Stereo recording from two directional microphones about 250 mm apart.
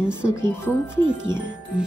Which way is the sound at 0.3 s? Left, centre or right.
Centre.